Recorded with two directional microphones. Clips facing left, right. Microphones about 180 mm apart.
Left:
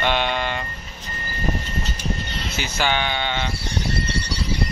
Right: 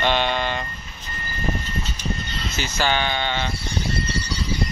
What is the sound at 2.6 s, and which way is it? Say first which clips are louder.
Speech: even; 15° left (ahead or behind).